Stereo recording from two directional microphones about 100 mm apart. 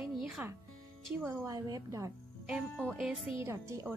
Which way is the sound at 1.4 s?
35° right (ahead or behind).